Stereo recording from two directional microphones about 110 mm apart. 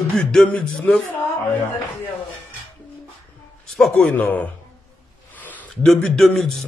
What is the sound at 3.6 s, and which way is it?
Speech, 5° left (ahead or behind).